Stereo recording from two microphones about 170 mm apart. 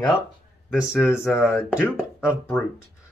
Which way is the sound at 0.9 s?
15° left (ahead or behind).